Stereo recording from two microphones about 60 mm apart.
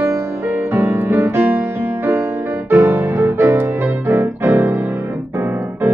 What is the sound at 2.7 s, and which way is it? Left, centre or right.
Music, right.